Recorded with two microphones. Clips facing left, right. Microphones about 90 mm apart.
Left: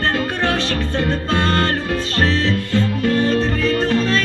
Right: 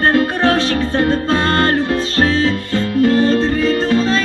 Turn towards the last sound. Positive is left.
turn(degrees=-30)  # may be behind; listen again after turning